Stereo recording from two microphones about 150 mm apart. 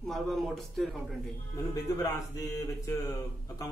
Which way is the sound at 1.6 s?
25° left (ahead or behind).